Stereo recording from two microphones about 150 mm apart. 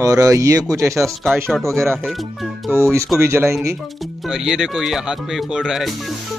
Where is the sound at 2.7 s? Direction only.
20° right (ahead or behind).